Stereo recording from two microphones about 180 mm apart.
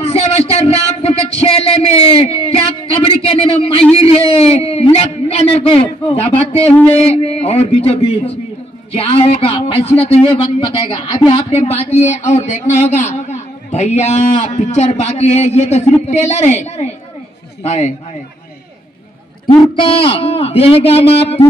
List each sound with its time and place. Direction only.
0.1 s a sound: 35° left (ahead or behind)
2.0 s speech: 30° left (ahead or behind)
19.4 s speech: 30° left (ahead or behind)